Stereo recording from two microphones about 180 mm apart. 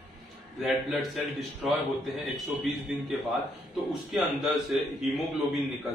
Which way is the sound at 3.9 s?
Centre (ahead or behind).